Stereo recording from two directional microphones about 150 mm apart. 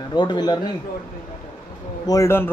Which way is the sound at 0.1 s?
30° left (ahead or behind).